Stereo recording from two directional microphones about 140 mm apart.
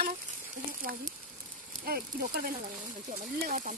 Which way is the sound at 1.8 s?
90° right.